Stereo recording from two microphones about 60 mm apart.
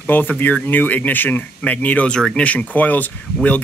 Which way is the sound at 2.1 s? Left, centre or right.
Centre.